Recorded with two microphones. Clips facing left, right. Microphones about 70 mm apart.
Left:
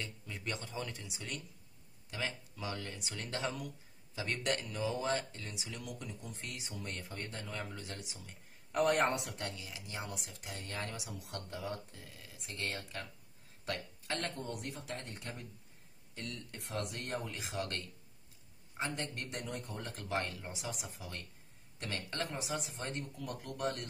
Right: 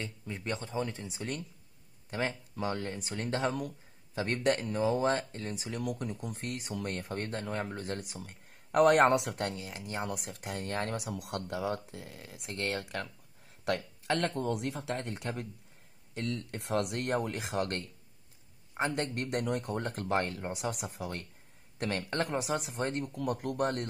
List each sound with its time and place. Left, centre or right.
0.0 s speech: right
9.6 s speech: right
13.7 s speech: right